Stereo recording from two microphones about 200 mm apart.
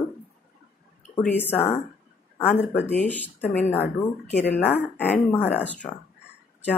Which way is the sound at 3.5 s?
35° left (ahead or behind).